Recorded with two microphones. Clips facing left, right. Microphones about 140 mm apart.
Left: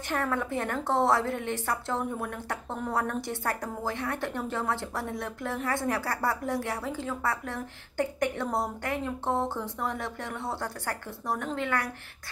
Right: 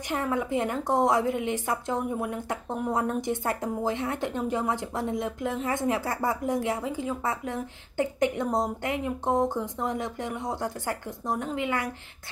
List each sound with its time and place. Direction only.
0.1 s a woman's voice: 15° right (ahead or behind)